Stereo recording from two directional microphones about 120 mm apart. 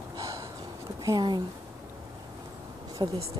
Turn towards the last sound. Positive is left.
turn(degrees=-35)  # may be behind; listen again after turning